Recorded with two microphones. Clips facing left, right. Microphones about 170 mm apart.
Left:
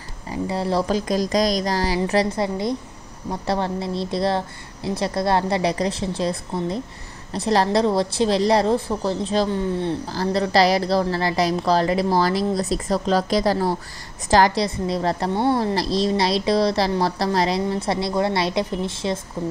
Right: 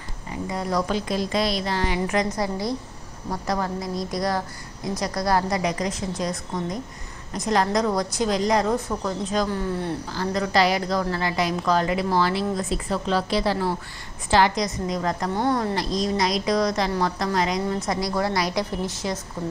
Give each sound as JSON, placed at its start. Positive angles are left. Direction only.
{"t": 0.3, "sound": "a woman's voice", "side_deg": 30}
{"t": 10.0, "sound": "a woman's voice", "side_deg": 35}